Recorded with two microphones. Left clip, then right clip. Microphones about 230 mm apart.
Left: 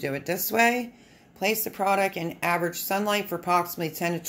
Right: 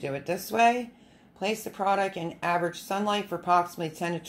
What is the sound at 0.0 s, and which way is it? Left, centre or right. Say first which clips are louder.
Speech: left 2 dB; centre.